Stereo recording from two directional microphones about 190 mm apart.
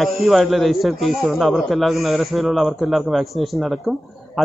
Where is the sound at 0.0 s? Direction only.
Centre (ahead or behind).